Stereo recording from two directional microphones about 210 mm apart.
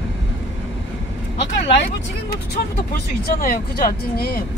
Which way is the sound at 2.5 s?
45° left (ahead or behind).